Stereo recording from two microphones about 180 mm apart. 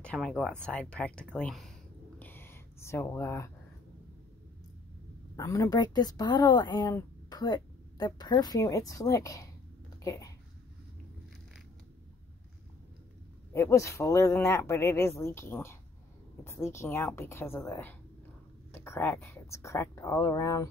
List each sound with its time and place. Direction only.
0.0 s speech: 5° left (ahead or behind)
2.1 s a sound: 10° left (ahead or behind)
5.3 s speech: 20° left (ahead or behind)
13.5 s speech: 15° left (ahead or behind)